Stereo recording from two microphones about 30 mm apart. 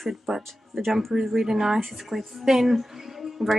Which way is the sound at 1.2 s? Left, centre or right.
Centre.